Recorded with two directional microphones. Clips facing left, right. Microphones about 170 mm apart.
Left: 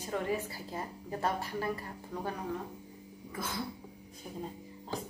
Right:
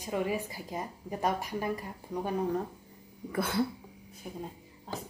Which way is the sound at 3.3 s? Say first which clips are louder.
Right 7 dB; 65° right (ahead or behind).